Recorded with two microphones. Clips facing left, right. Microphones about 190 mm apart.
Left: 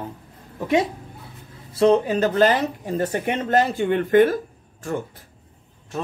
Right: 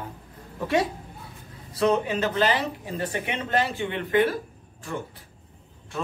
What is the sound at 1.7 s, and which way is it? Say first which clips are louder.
Speech: left 6 dB; 30° left (ahead or behind).